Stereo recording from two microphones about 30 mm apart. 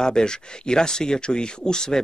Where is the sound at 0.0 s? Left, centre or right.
Left.